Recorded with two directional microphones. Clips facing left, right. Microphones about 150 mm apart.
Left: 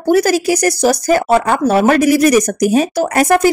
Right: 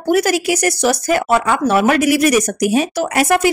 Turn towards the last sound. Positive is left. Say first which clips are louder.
# left 3 dB
turn(degrees=40)  # may be behind; listen again after turning